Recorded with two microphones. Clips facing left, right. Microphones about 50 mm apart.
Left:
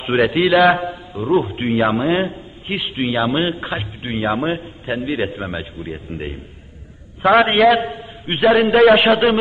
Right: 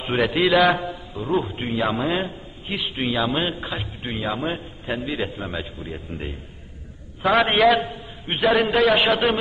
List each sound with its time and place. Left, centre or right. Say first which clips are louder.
0.0 s a man's voice: left 4 dB; centre
0.7 s a sound: left 5 dB; centre
1.5 s a man's voice: left 7 dB; left
1.8 s a man's voice: left 5 dB; centre
2.2 s a man's voice: left 6 dB; left
3.0 s a man's voice: left 5 dB; centre
7.2 s a man's voice: left 5 dB; centre
8.7 s a man's voice: left 7 dB; centre